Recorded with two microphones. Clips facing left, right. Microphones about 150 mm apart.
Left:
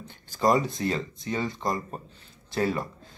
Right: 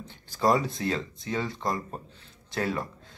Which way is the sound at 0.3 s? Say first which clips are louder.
Left 1 dB; centre (ahead or behind).